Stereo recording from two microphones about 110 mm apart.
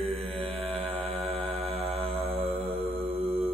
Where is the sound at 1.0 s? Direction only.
65° right (ahead or behind).